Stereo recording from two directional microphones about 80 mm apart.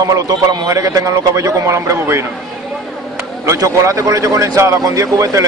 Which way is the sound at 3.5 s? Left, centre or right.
Right.